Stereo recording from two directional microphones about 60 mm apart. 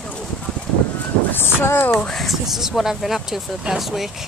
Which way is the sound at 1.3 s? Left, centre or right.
Left.